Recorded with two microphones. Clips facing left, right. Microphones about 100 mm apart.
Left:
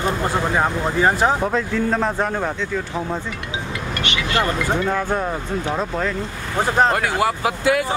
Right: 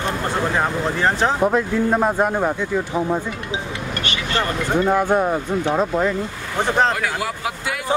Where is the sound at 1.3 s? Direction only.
15° right (ahead or behind).